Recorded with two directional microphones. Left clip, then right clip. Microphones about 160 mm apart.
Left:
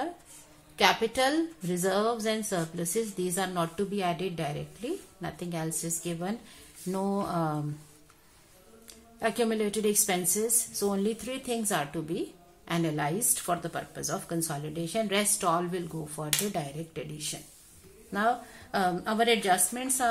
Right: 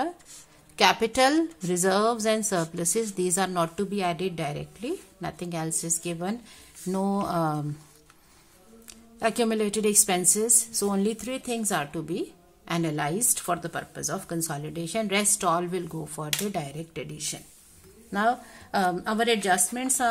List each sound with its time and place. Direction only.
0.7 s a woman's voice: 35° right (ahead or behind)
9.2 s a woman's voice: 35° right (ahead or behind)